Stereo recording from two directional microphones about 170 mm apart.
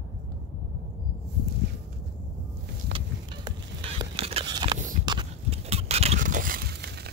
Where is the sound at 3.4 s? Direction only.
30° right (ahead or behind).